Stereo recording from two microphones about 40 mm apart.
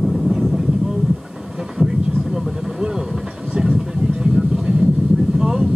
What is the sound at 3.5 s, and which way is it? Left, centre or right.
Vehicle, centre.